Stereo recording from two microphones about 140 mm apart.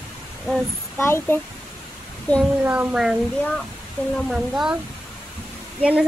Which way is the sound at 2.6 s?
10° right (ahead or behind).